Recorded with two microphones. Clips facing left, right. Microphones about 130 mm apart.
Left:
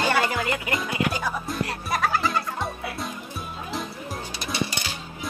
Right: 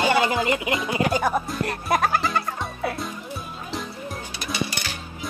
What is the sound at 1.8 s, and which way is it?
Music, 55° right (ahead or behind).